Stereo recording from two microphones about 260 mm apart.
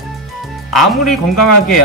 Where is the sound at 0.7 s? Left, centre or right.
Centre.